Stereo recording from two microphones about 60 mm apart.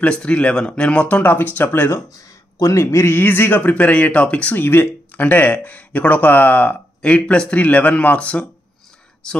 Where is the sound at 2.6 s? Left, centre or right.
Left.